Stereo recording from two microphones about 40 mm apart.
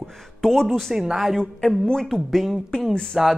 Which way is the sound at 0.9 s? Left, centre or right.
Centre.